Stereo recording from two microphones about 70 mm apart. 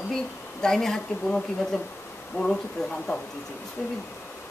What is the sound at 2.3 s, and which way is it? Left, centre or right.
Speech, left.